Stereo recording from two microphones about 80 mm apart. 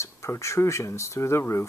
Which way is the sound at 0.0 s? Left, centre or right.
Left.